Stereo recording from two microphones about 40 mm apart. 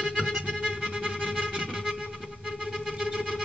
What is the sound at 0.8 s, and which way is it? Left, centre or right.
Music, centre.